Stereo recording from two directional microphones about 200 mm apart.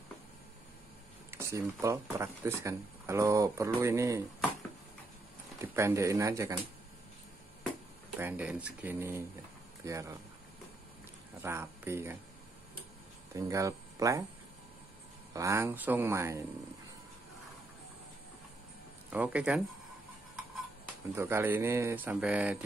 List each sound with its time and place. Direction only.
1.3 s speech: 15° right (ahead or behind)
5.8 s speech: 15° right (ahead or behind)
8.2 s speech: 10° right (ahead or behind)
11.4 s speech: 10° right (ahead or behind)
13.3 s speech: 15° right (ahead or behind)
15.3 s speech: 15° right (ahead or behind)
19.1 s speech: 5° right (ahead or behind)
21.1 s speech: 10° right (ahead or behind)